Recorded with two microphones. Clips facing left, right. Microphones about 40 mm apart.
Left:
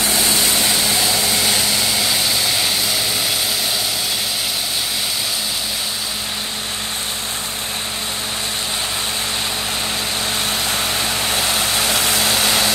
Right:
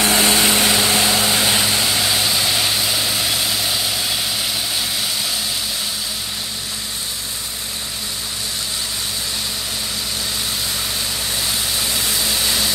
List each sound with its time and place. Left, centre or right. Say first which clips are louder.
0.0 s vehicle: right 3 dB; right
0.4 s vehicle: right 2 dB; right
0.7 s vehicle: right 2 dB; right; by 3.3 s centre
11.2 s vehicle: left 4 dB; left